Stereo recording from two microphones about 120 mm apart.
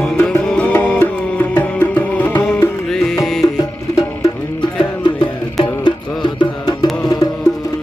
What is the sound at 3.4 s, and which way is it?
Music, 30° left (ahead or behind).